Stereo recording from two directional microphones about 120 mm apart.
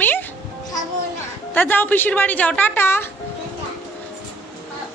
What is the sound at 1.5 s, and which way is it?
A woman's voice, 15° left (ahead or behind).